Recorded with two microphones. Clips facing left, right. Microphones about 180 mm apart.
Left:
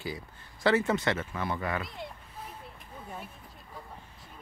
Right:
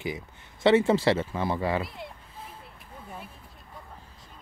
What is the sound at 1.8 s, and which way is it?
Speech, centre (ahead or behind).